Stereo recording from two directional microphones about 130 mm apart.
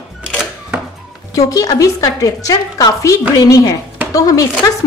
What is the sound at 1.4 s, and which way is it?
A woman's voice, 25° left (ahead or behind).